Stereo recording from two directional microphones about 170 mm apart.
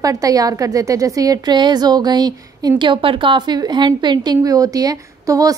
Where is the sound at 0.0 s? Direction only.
20° right (ahead or behind).